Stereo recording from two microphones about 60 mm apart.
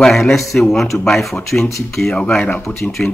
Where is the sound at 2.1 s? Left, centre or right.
Centre.